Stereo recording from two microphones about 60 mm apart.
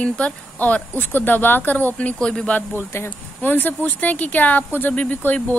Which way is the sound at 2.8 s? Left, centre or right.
Left.